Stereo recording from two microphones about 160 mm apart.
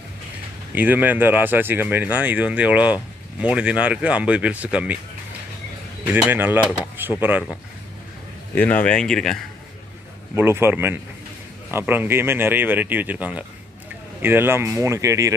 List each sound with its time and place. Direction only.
0.7 s speech: 10° right (ahead or behind)
6.2 s speech: 15° right (ahead or behind)
8.5 s speech: 10° left (ahead or behind)
10.3 s speech: 15° right (ahead or behind)